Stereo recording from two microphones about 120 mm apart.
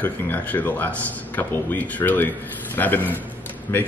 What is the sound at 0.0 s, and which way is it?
Speech, 15° left (ahead or behind).